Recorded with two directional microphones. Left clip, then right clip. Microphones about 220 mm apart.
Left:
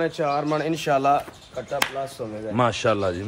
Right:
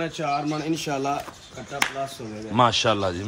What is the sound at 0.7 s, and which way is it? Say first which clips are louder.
Speech: left 6 dB; 20° left (ahead or behind).